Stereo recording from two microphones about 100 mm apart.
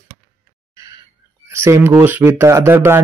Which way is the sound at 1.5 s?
25° right (ahead or behind).